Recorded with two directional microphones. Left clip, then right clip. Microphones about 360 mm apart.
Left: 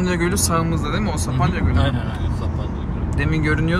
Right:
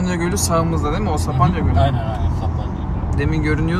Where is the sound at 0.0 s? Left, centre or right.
Centre.